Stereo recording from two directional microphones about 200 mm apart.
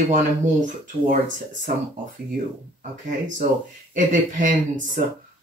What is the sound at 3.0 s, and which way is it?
Speech, 40° right (ahead or behind).